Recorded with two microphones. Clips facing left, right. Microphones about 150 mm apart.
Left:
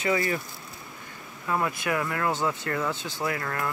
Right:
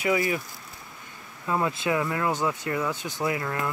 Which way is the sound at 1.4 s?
20° right (ahead or behind).